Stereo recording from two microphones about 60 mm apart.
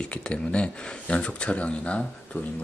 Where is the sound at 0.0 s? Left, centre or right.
Centre.